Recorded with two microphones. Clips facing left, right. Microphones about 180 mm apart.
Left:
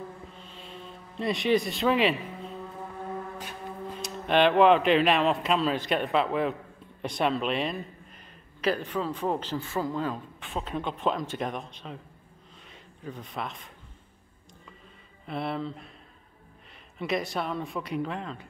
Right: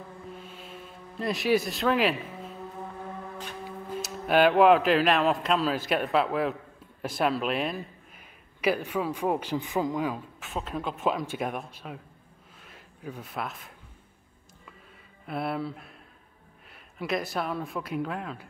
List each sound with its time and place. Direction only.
0.6 s music: 5° right (ahead or behind)
4.0 s speech: 5° right (ahead or behind)
15.2 s speech: 5° right (ahead or behind)
17.0 s speech: centre (ahead or behind)